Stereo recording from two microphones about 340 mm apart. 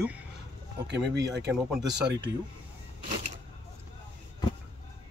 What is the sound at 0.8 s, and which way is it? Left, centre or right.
Speech, right.